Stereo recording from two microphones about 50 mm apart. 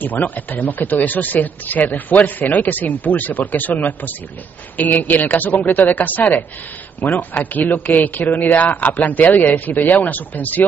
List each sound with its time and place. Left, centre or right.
0.0 s speech: left